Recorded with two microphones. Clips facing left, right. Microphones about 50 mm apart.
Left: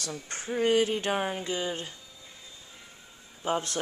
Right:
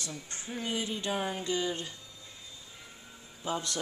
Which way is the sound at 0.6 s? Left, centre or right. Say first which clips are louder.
Left 10 dB; left.